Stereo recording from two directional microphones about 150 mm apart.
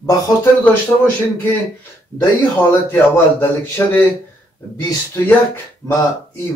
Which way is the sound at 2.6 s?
15° left (ahead or behind).